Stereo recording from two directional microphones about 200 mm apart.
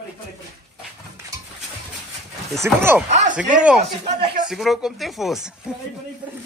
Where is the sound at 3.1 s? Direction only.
35° right (ahead or behind).